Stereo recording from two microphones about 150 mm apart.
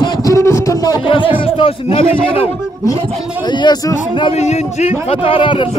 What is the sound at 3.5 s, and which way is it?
Speech, 30° left (ahead or behind).